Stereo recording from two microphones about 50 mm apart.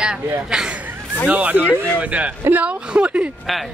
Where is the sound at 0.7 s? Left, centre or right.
Right.